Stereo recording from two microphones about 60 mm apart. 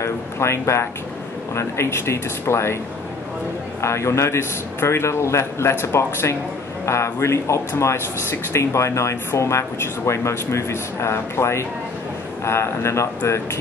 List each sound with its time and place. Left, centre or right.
0.0 s speech: left
3.8 s speech: left